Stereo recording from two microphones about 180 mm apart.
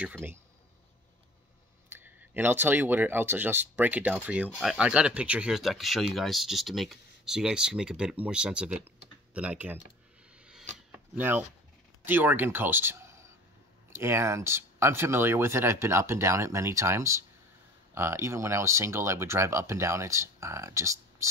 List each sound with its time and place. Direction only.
0.0 s speech: 10° right (ahead or behind)
1.9 s speech: 10° right (ahead or behind)
10.4 s a sound: 5° right (ahead or behind)
12.0 s speech: 10° right (ahead or behind)